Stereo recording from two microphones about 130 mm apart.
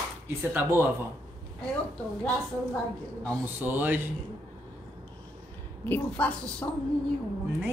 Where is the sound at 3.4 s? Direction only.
15° right (ahead or behind).